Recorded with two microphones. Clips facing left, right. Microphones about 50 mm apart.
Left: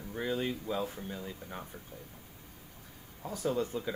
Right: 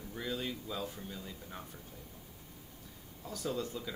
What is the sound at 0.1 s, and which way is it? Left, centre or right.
Speech, left.